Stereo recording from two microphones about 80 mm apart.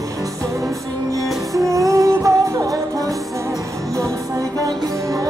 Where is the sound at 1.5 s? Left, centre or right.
Right.